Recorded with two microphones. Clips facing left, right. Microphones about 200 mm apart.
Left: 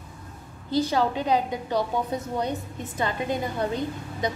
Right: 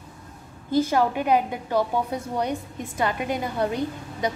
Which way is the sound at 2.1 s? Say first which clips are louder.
Right 1 dB; 10° right (ahead or behind).